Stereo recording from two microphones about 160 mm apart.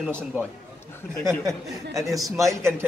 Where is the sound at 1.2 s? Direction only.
20° right (ahead or behind).